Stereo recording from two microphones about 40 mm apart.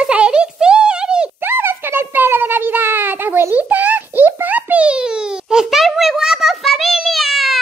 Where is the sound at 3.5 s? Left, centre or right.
Right.